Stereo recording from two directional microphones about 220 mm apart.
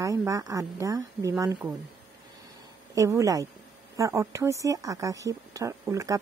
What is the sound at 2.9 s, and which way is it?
Speech, 15° right (ahead or behind).